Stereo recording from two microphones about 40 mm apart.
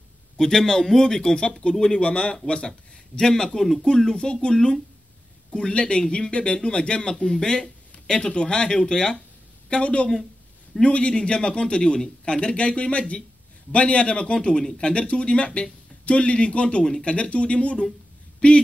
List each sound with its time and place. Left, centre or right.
0.4 s a man's voice: centre
9.7 s a man's voice: left